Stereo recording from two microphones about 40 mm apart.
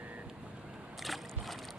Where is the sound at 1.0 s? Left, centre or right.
Centre.